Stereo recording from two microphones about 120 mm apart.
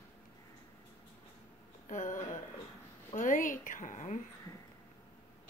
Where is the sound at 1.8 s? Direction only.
90° left.